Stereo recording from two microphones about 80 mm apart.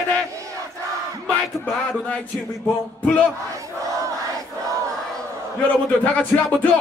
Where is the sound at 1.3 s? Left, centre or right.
Centre.